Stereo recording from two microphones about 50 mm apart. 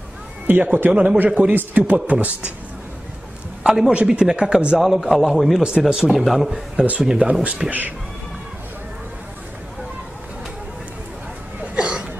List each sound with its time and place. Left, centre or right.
0.5 s speech: right
3.6 s speech: centre
3.9 s a man's voice: right
6.1 s a man's voice: centre
6.8 s speech: centre
7.6 s speech: centre
11.6 s a sound: right